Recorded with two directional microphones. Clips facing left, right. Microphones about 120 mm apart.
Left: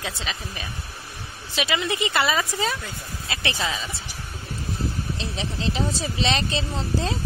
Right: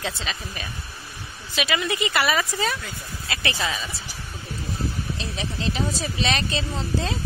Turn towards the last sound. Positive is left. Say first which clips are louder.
# left 1 dB
turn(degrees=30)  # may be behind; listen again after turning